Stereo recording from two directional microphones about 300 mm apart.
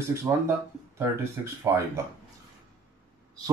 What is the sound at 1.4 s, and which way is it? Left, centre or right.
Speech, centre.